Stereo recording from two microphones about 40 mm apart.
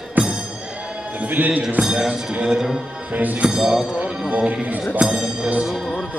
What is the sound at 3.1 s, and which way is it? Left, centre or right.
Speech, right.